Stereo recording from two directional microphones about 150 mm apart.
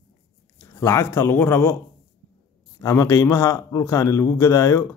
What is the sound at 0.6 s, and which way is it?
Speech, 20° left (ahead or behind).